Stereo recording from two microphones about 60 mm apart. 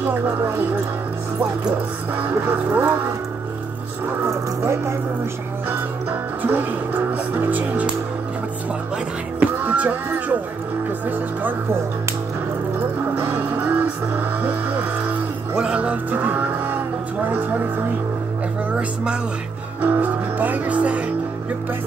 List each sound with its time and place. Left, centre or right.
2.1 s speech: right
6.4 s speech: right
9.4 s music: right
12.7 s music: right
15.5 s music: centre
19.8 s music: right